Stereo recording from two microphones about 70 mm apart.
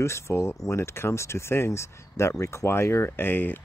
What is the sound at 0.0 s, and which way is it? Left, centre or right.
Speech, left.